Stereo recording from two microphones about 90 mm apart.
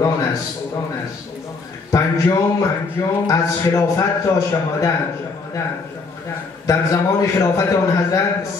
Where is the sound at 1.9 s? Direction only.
30° left (ahead or behind).